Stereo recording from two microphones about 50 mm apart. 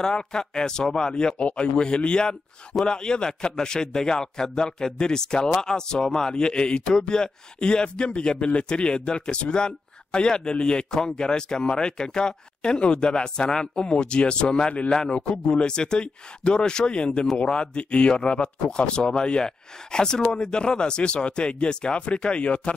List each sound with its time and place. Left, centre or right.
0.0 s speech: centre